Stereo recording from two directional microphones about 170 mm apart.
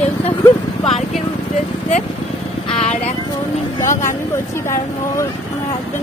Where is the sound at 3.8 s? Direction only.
50° left (ahead or behind).